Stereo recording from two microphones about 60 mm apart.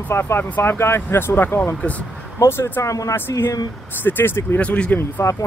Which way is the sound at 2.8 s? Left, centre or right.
Left.